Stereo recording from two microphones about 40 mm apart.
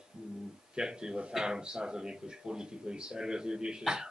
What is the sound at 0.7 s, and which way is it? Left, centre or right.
Speech, centre.